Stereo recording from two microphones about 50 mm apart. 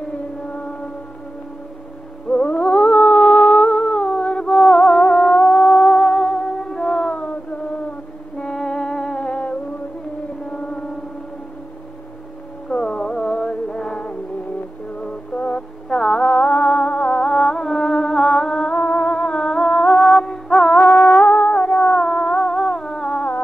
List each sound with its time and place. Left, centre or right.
2.2 s a sound: left
8.5 s music: centre
12.6 s music: centre
15.3 s music: centre
16.3 s music: left
18.7 s music: left; by 20.7 s centre
20.7 s music: left